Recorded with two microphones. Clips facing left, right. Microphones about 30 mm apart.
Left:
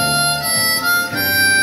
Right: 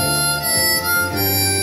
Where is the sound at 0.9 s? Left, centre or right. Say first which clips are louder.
Left 3 dB; left.